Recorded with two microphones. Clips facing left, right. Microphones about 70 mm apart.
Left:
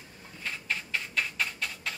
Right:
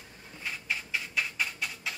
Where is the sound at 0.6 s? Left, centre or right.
Centre.